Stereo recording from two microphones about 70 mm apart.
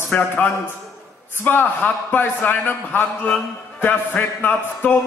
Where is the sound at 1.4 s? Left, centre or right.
Left.